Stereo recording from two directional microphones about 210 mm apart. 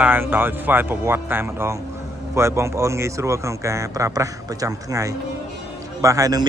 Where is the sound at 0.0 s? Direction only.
10° right (ahead or behind).